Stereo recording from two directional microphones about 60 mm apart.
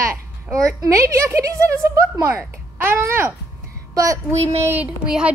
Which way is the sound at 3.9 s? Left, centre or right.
Right.